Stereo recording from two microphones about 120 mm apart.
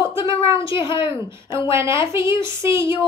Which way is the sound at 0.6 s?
45° left (ahead or behind).